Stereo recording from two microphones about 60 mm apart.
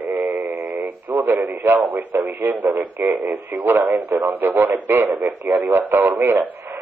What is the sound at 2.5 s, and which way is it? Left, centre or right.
Speech, right.